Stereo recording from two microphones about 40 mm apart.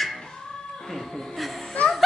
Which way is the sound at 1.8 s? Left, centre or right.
Left.